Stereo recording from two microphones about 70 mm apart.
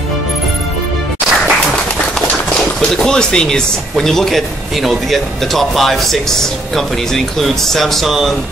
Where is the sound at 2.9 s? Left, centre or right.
Centre.